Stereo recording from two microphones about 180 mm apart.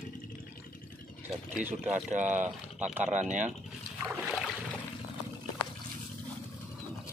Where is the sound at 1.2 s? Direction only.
10° right (ahead or behind).